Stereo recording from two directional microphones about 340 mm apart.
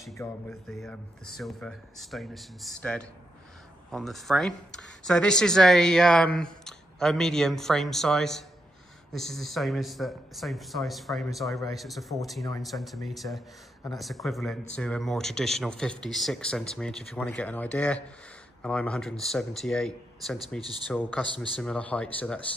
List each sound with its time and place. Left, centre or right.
0.0 s speech: centre